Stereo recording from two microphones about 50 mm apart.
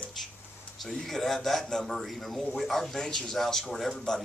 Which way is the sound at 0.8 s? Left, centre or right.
Centre.